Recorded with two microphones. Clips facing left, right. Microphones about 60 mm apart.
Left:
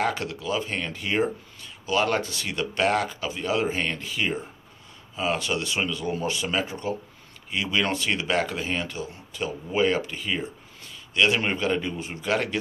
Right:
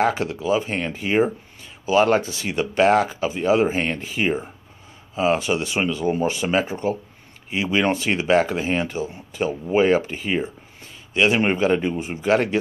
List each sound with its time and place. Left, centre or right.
0.0 s speech: right